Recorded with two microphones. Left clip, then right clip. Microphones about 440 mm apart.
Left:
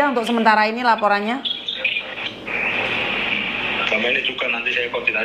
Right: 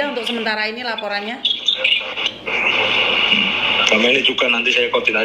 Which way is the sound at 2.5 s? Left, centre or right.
Right.